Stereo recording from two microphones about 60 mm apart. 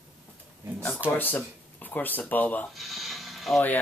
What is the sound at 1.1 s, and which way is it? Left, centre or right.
Speech, left.